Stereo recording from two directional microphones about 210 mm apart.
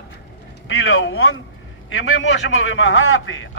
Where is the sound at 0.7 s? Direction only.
70° left (ahead or behind).